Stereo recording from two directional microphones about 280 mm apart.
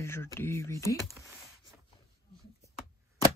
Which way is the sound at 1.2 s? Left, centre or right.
Centre.